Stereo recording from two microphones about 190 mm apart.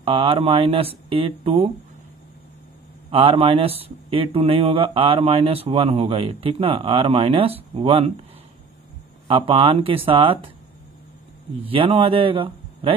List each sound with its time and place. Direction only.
0.0 s speech: 30° right (ahead or behind)
3.1 s speech: 30° right (ahead or behind)
9.3 s speech: 25° right (ahead or behind)
11.7 s speech: 30° right (ahead or behind)